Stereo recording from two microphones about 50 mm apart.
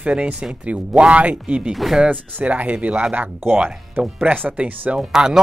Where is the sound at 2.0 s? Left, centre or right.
Right.